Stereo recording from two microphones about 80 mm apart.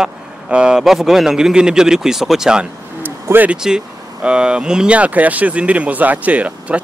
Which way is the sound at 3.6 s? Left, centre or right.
Centre.